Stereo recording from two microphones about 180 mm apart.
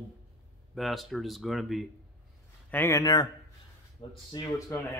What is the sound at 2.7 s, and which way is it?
Speech, 10° left (ahead or behind).